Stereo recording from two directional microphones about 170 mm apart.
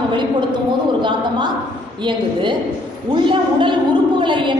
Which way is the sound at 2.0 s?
30° right (ahead or behind).